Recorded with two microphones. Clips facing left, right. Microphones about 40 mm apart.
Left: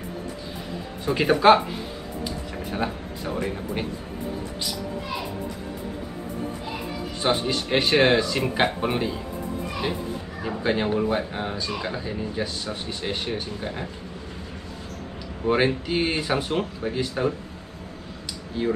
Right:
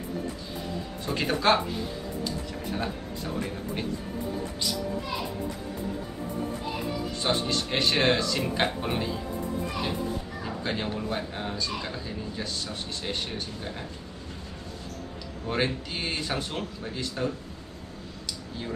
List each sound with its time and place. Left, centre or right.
1.0 s speech: centre
2.7 s speech: centre
7.2 s speech: centre
10.4 s speech: centre
15.4 s speech: centre
18.6 s speech: centre